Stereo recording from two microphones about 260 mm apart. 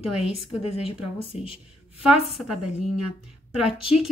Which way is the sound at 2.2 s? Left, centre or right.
Centre.